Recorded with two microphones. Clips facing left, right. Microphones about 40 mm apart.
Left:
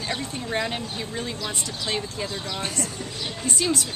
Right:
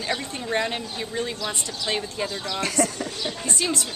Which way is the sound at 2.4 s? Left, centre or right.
Right.